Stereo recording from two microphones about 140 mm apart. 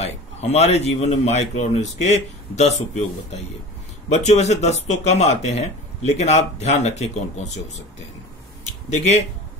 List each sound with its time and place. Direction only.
0.0 s speech: 50° left (ahead or behind)
8.9 s speech: 50° left (ahead or behind)